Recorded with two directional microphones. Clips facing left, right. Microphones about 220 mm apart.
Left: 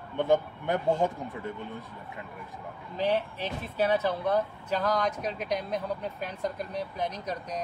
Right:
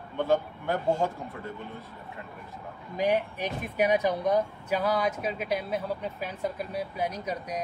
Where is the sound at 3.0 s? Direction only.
15° right (ahead or behind).